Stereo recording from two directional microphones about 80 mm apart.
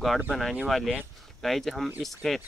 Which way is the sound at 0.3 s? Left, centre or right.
Centre.